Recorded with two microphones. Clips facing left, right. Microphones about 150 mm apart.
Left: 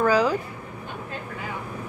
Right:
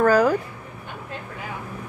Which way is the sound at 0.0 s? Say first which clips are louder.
Right 3 dB; 50° right (ahead or behind).